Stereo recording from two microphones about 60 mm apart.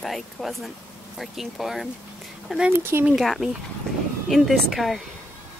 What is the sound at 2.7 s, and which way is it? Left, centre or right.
Speech, right.